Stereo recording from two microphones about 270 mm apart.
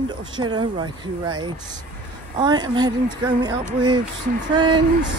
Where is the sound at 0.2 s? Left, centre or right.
Centre.